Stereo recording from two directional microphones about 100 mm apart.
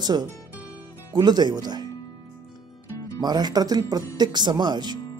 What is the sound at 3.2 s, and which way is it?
Speech, 45° right (ahead or behind).